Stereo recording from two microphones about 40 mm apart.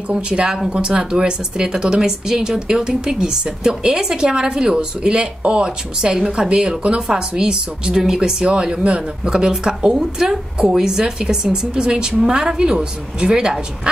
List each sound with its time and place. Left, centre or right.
0.1 s a woman's voice: right